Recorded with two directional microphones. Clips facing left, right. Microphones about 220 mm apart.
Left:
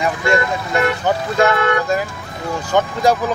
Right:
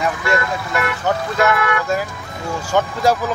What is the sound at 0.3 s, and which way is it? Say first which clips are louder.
Speech: left 5 dB; 25° left (ahead or behind).